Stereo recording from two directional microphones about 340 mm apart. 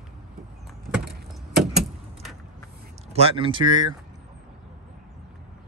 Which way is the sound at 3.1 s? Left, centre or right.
Centre.